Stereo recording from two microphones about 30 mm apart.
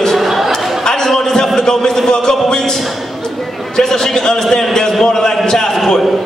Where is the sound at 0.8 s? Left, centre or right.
Left.